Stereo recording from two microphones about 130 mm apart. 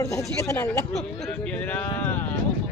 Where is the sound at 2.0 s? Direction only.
15° left (ahead or behind).